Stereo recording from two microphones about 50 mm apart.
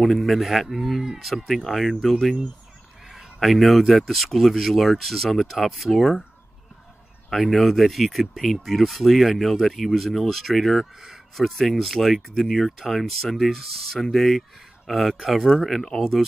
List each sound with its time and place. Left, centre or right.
0.0 s speech: centre
7.2 s speech: centre